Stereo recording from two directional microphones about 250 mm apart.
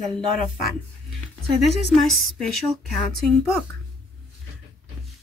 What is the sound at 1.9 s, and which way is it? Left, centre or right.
Speech, centre.